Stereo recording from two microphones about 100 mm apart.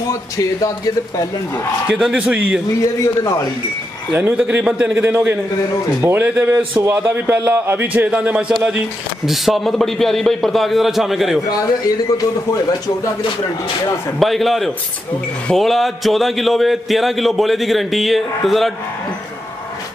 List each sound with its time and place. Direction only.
0.1 s speech: 35° left (ahead or behind)
1.9 s a man's voice: 10° right (ahead or behind)
2.8 s speech: 30° left (ahead or behind)
4.1 s a man's voice: 15° right (ahead or behind)
14.2 s a man's voice: centre (ahead or behind)